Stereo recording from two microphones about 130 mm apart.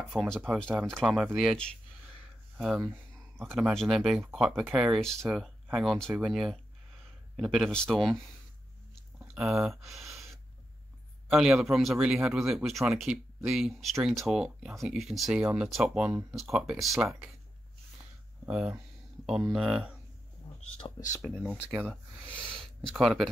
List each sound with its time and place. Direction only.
0.1 s speech: centre (ahead or behind)
9.3 s speech: 5° right (ahead or behind)
18.5 s speech: 5° right (ahead or behind)
20.4 s a sound: 40° left (ahead or behind)
20.8 s a sound: 25° left (ahead or behind)
21.2 s speech: centre (ahead or behind)
21.8 s speech: 10° left (ahead or behind)